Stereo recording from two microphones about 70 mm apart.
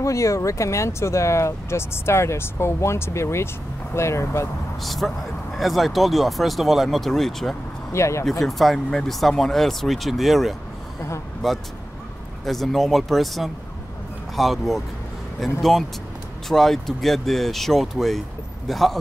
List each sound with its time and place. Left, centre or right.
0.0 s speech: left
4.8 s speech: centre
7.9 s speech: left
8.3 s speech: centre